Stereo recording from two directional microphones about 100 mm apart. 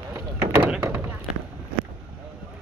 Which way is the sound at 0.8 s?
25° right (ahead or behind).